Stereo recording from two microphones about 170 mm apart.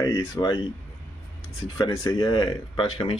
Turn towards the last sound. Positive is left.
turn(degrees=30)  # may be behind; listen again after turning